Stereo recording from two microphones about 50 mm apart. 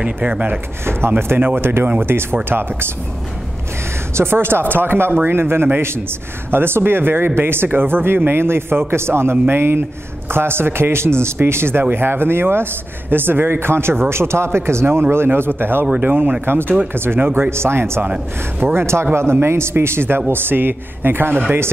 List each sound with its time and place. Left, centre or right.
0.0 s speech: right
0.8 s speech: right
4.1 s a man's voice: right
16.0 s speech: right